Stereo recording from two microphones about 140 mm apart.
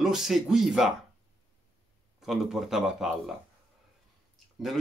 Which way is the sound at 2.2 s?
Centre (ahead or behind).